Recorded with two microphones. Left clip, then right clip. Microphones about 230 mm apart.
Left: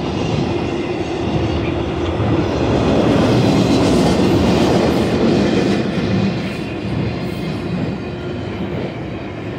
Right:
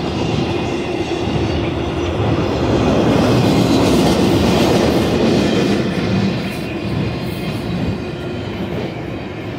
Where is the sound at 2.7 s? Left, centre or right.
Centre.